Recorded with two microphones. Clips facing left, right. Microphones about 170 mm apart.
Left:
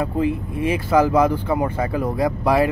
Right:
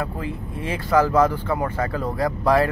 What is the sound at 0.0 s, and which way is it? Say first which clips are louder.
Speech: left 7 dB; 20° left (ahead or behind).